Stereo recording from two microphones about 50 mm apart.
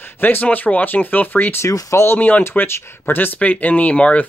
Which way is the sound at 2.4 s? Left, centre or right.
Left.